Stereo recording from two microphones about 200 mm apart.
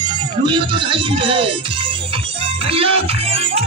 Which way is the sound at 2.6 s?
30° right (ahead or behind).